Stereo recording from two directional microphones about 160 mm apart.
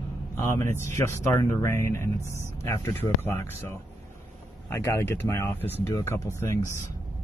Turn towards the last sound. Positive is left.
turn(degrees=20)  # may be behind; listen again after turning